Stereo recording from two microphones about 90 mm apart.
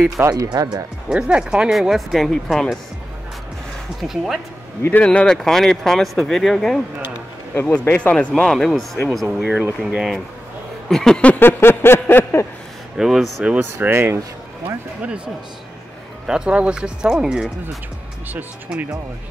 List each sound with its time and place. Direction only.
0.2 s speech: 20° right (ahead or behind)
0.5 s speech: 50° right (ahead or behind)
1.0 s speech: 10° right (ahead or behind)
4.0 s speech: centre (ahead or behind)
5.0 s speech: 10° left (ahead or behind)
7.6 s speech: 15° left (ahead or behind); by 10.2 s 5° right (ahead or behind)
10.9 s speech: 5° left (ahead or behind)
11.3 s a sound: 25° left (ahead or behind)
12.9 s speech: 5° right (ahead or behind)
13.6 s speech: 25° right (ahead or behind)
16.3 s speech: 10° right (ahead or behind)
18.7 s speech: 10° right (ahead or behind)